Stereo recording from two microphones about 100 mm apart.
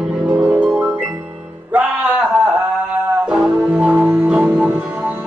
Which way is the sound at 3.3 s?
5° right (ahead or behind).